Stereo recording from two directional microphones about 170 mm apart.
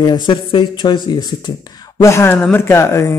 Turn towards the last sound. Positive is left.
turn(degrees=15)  # may be behind; listen again after turning